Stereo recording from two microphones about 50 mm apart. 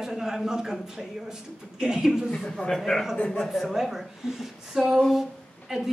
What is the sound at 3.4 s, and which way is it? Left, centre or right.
A woman's voice, centre.